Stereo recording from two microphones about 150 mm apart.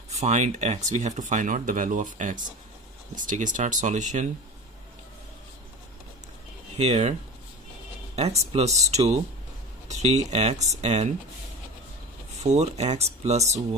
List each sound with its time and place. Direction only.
0.1 s speech: 50° right (ahead or behind)
6.8 s speech: 45° right (ahead or behind)
8.2 s speech: 45° right (ahead or behind)
12.4 s speech: 50° right (ahead or behind)